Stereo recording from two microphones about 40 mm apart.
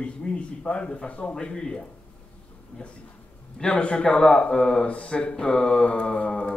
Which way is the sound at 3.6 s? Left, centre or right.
Left.